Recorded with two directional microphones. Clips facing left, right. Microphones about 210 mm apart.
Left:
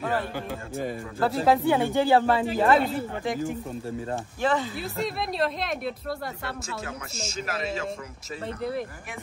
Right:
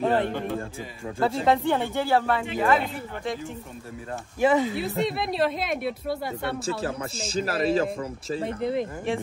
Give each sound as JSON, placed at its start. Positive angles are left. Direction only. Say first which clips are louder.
{"t": 0.0, "sound": "a sound", "louder": "right 5 dB", "side_deg": -20}
{"t": 1.2, "sound": "speech", "louder": "even", "side_deg": 0}
{"t": 2.2, "sound": "speech", "louder": "left 2 dB", "side_deg": 30}
{"t": 4.4, "sound": "speech", "louder": "right 6 dB", "side_deg": -10}
{"t": 4.7, "sound": "a woman's voice", "louder": "right 4 dB", "side_deg": 0}
{"t": 6.6, "sound": "a man's voice", "louder": "right 7 dB", "side_deg": -30}